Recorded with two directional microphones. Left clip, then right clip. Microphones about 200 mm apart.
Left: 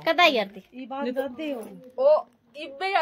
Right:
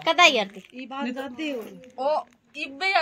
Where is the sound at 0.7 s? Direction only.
45° left (ahead or behind).